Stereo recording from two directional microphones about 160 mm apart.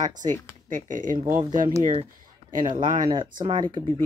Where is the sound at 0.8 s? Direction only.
55° right (ahead or behind).